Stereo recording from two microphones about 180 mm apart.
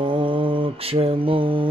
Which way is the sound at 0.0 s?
30° right (ahead or behind).